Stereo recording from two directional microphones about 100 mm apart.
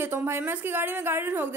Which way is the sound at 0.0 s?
20° right (ahead or behind).